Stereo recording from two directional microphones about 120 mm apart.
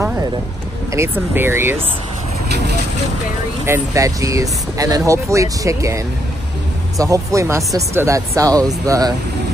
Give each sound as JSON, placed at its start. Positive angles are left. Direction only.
{"t": 0.9, "sound": "speech", "side_deg": -20}
{"t": 3.6, "sound": "speech", "side_deg": -25}
{"t": 7.0, "sound": "speech", "side_deg": -25}